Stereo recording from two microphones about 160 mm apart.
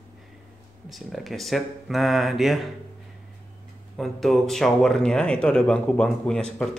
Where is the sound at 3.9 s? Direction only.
Centre (ahead or behind).